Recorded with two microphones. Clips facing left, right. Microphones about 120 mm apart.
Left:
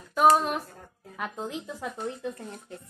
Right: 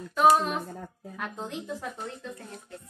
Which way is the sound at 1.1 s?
5° left (ahead or behind).